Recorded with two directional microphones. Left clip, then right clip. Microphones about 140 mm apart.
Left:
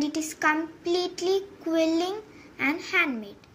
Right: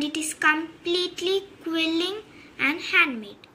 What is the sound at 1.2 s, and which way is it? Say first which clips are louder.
A child's voice: even; 25° left (ahead or behind).